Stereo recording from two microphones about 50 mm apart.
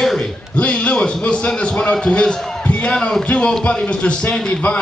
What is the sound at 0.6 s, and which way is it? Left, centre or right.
Speech, left.